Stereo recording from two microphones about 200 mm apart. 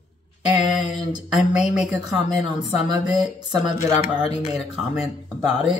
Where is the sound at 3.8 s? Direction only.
30° left (ahead or behind).